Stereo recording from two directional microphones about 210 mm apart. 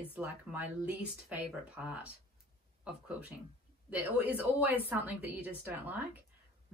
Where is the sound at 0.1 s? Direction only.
5° right (ahead or behind).